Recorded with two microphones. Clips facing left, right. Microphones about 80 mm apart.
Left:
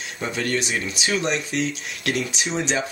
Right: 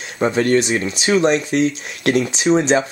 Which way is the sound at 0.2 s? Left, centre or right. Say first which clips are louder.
Right 10 dB; right.